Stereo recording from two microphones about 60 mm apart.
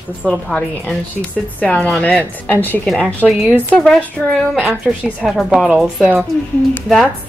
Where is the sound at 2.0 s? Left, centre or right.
Left.